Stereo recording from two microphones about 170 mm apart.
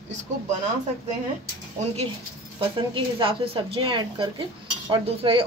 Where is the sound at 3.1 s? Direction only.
30° right (ahead or behind).